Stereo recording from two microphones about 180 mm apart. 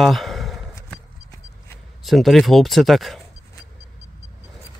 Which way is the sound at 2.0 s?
Centre (ahead or behind).